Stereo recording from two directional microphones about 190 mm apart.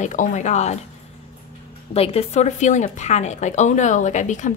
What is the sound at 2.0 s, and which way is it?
A woman's voice, 30° left (ahead or behind).